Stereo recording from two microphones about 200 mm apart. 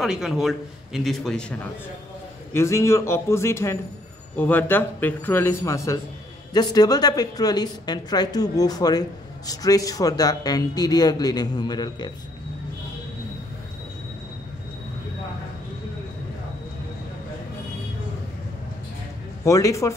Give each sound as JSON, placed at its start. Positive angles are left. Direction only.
{"t": 0.0, "sound": "a man's voice", "side_deg": 0}
{"t": 2.5, "sound": "a man's voice", "side_deg": 15}
{"t": 19.4, "sound": "speech", "side_deg": 15}